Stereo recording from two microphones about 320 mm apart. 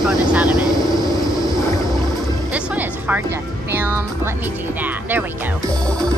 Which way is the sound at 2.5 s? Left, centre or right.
Centre.